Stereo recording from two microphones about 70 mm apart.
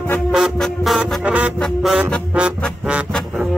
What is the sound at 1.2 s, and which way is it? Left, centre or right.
Music, centre.